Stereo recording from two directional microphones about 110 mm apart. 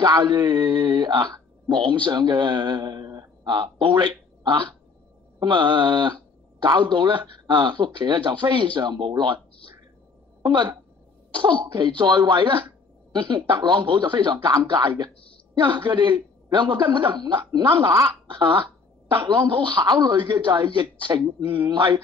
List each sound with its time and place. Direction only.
0.0 s speech: 40° right (ahead or behind)
10.4 s speech: 45° right (ahead or behind)